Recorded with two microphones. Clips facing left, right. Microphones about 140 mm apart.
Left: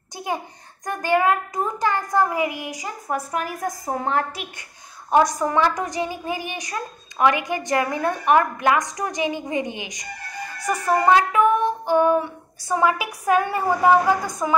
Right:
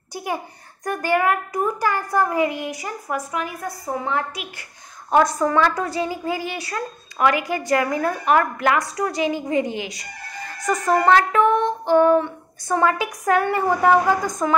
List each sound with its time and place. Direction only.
0.1 s a sound: 20° left (ahead or behind)
0.8 s speech: 20° left (ahead or behind)
3.1 s a woman's voice: 30° left (ahead or behind)
3.3 s a woman's voice: 45° left (ahead or behind)
5.1 s speech: 15° left (ahead or behind)